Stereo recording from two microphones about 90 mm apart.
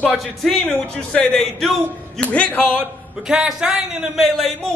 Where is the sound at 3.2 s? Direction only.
5° right (ahead or behind).